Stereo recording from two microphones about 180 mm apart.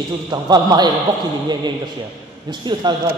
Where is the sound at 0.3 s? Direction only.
25° right (ahead or behind).